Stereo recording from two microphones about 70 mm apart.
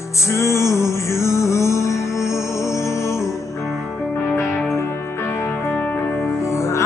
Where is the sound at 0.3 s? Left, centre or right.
Left.